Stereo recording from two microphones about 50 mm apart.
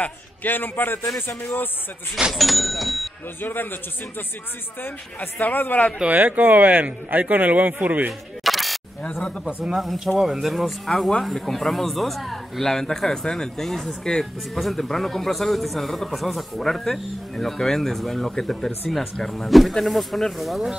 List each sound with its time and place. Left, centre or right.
0.0 s a man's voice: left
2.3 s a man's voice: centre
3.3 s a man's voice: left
5.4 s a man's voice: left
6.0 s a man's voice: right
8.5 s single-lens reflex camera: centre
9.8 s a man's voice: centre
11.2 s speech: centre
14.5 s a man's voice: centre